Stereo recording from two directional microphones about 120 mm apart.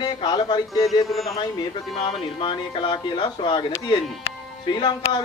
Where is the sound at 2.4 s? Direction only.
40° left (ahead or behind).